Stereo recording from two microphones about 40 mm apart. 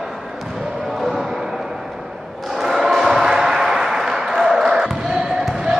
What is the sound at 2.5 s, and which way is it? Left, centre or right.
Basketball bounce, centre.